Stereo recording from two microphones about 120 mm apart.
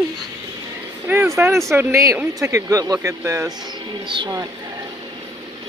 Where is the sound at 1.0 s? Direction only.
20° right (ahead or behind).